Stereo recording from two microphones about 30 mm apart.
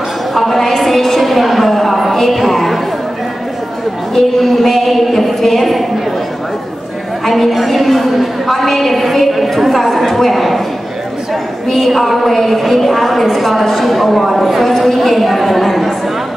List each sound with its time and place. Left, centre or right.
0.3 s a sound: centre
4.1 s a woman's voice: centre
7.2 s a woman's voice: centre
11.7 s a woman's voice: centre